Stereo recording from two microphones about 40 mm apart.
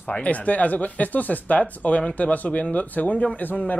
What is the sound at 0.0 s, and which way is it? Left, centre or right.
Speech, left.